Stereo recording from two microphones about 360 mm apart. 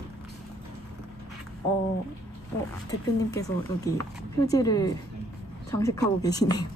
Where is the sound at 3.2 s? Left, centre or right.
Centre.